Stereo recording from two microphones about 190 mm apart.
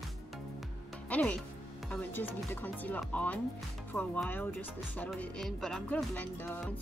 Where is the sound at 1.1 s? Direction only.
5° left (ahead or behind).